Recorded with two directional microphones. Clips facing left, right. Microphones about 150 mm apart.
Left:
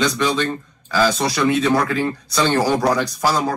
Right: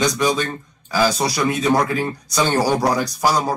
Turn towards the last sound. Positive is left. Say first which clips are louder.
# right 1 dB
turn(degrees=-15)  # may be behind; listen again after turning